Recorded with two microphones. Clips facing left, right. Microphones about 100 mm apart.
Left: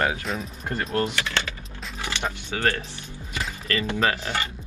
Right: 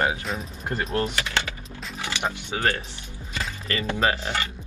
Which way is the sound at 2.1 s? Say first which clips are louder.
Right 1 dB; 20° right (ahead or behind).